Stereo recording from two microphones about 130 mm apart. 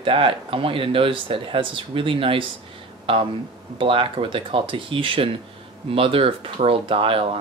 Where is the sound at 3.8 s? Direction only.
45° right (ahead or behind).